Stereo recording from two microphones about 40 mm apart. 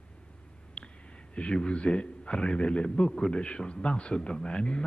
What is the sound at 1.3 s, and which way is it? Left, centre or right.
Speech, left.